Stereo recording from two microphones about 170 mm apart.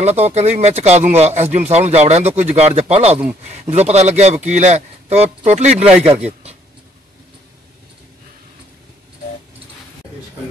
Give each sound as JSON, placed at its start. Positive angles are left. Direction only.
{"t": 0.0, "sound": "speech", "side_deg": -40}
{"t": 5.9, "sound": "speech", "side_deg": -5}